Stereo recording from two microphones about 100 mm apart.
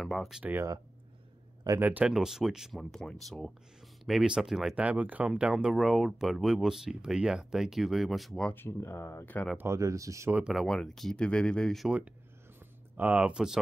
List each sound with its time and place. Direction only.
0.0 s speech: centre (ahead or behind)
0.4 s speech: 20° right (ahead or behind)
1.8 s speech: 20° right (ahead or behind)
2.0 s speech: 5° right (ahead or behind)
4.8 s speech: 15° right (ahead or behind)
8.5 s speech: 20° left (ahead or behind)
9.6 s speech: 30° right (ahead or behind)
10.5 s speech: centre (ahead or behind)
12.9 s speech: 15° right (ahead or behind)